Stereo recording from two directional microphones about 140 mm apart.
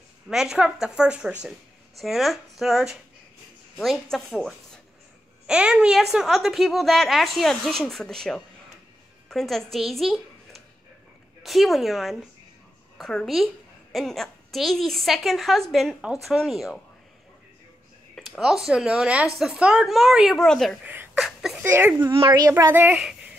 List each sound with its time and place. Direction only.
0.3 s a woman's voice: 5° right (ahead or behind)
18.1 s a woman's voice: centre (ahead or behind)
20.8 s a sound: 10° right (ahead or behind)
21.2 s speech: 5° right (ahead or behind)
21.6 s speech: 15° right (ahead or behind)
22.3 s speech: 25° right (ahead or behind); by 23.1 s 10° right (ahead or behind)